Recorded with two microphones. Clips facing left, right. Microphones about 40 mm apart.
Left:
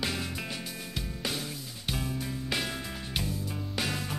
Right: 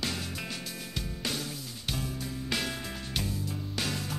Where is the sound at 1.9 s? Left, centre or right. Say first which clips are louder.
Left 2 dB; centre.